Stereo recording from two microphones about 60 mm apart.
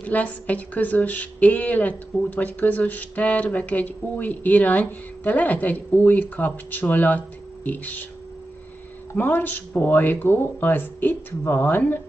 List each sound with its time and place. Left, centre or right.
0.0 s a woman's voice: left
9.1 s speech: left